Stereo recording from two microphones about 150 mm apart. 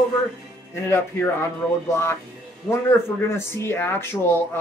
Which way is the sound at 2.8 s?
15° left (ahead or behind).